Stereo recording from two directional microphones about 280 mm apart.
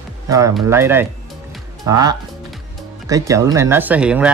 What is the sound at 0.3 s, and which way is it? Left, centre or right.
Speech, centre.